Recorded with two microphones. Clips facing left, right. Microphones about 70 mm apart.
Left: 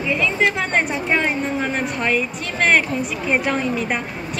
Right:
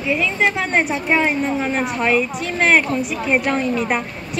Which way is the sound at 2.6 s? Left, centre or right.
Centre.